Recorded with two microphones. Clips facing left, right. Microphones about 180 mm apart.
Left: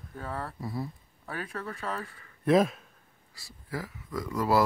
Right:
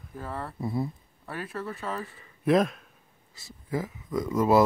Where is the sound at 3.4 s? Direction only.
20° right (ahead or behind).